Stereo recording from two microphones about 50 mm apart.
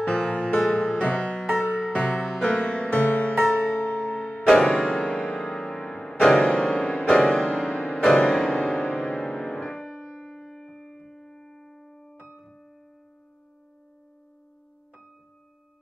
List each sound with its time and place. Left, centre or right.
0.0 s music: centre
0.9 s music: left
2.1 s music: centre; by 4.1 s left
4.1 s music: left
4.5 s music: centre